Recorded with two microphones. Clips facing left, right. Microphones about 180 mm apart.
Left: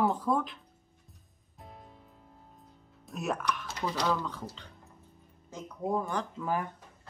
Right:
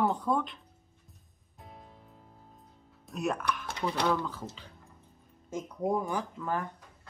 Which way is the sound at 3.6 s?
55° right (ahead or behind).